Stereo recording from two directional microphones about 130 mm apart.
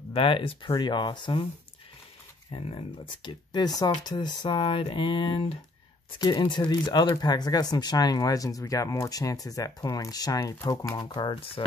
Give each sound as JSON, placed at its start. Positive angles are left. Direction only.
{"t": 0.1, "sound": "speech", "side_deg": 45}
{"t": 2.5, "sound": "speech", "side_deg": 45}
{"t": 6.1, "sound": "speech", "side_deg": 35}